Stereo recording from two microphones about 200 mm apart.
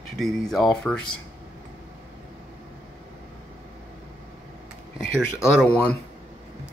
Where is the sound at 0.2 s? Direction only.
Centre (ahead or behind).